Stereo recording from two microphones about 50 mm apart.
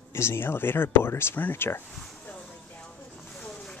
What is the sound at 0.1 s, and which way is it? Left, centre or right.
Speech, left.